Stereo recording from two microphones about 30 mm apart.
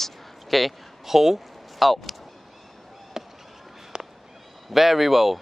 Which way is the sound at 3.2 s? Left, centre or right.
Centre.